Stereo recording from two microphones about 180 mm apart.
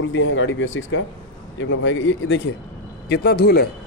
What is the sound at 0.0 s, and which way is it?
Speech, 90° left.